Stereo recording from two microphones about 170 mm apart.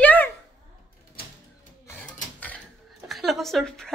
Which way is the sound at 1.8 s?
10° left (ahead or behind).